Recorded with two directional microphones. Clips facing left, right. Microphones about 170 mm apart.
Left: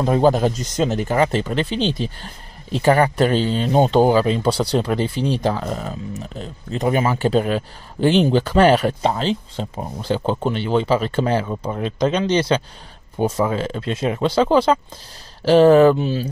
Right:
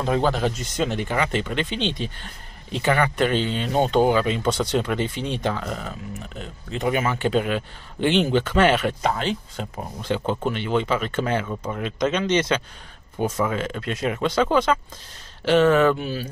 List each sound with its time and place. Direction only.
0.0 s speech: 40° left (ahead or behind)